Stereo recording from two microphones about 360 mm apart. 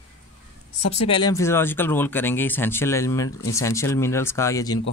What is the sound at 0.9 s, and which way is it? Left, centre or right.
Speech, centre.